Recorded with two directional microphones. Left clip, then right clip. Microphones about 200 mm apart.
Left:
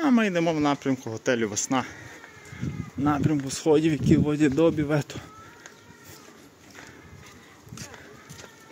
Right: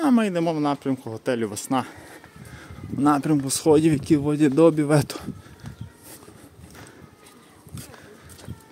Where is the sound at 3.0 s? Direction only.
30° right (ahead or behind).